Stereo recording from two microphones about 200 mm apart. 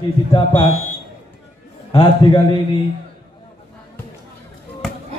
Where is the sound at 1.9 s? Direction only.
25° left (ahead or behind).